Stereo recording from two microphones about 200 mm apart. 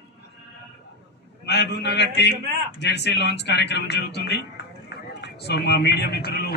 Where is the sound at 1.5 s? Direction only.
55° left (ahead or behind).